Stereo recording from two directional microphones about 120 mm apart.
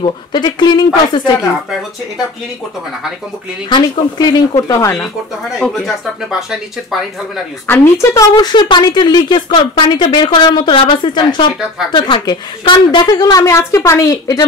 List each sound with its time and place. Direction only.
0.3 s a woman's voice: 40° left (ahead or behind)
3.6 s a woman's voice: 40° left (ahead or behind)
5.6 s speech: centre (ahead or behind)
7.6 s a woman's voice: 15° left (ahead or behind)